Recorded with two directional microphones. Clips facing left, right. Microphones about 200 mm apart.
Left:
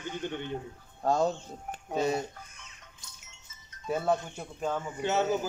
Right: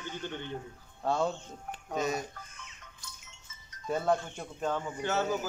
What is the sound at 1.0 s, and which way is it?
Speech, 40° left (ahead or behind).